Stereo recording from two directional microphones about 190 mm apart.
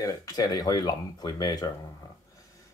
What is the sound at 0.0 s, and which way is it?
Speech, 20° left (ahead or behind).